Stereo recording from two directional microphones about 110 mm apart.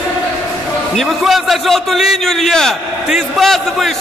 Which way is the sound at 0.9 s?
Centre (ahead or behind).